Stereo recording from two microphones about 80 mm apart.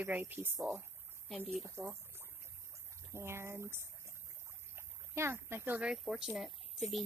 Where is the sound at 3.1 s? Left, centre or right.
Right.